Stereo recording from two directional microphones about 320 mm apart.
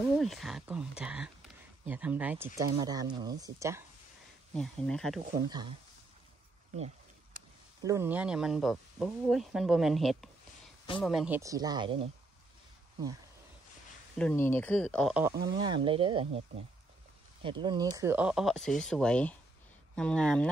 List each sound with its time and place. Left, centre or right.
0.2 s speech: centre
4.6 s speech: centre
5.5 s speech: centre
7.8 s speech: centre
14.1 s speech: centre
15.6 s speech: centre